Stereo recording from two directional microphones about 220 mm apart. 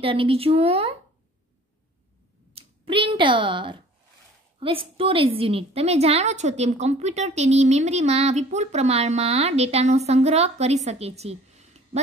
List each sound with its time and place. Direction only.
0.0 s a woman's voice: 25° right (ahead or behind)
2.5 s a woman's voice: 25° right (ahead or behind)